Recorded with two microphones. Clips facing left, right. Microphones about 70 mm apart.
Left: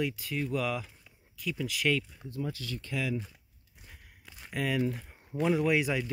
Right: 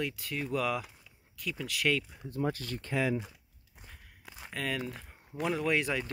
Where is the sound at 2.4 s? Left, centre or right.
Right.